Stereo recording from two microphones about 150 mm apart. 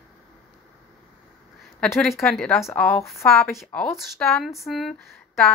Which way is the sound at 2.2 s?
5° left (ahead or behind).